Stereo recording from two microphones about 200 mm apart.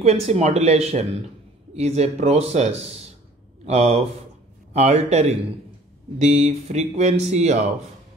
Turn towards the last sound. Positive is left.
turn(degrees=-35)  # may be behind; listen again after turning